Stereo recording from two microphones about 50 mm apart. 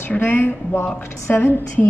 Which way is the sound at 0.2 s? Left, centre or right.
Left.